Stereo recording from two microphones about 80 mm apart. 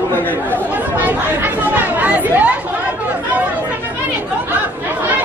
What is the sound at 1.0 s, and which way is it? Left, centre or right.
Chatter, right.